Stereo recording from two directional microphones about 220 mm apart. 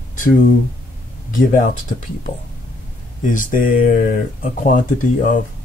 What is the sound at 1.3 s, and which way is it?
Speech, 35° left (ahead or behind).